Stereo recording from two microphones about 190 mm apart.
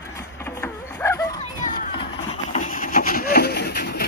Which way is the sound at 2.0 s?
40° left (ahead or behind).